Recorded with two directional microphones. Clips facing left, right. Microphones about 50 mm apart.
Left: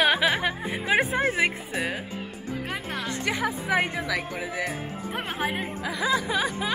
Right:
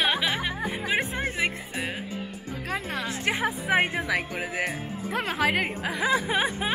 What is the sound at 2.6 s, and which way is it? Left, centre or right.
Speech, right.